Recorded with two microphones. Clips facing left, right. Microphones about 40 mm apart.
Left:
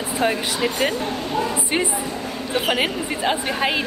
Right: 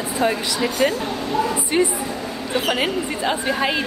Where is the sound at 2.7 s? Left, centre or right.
Centre.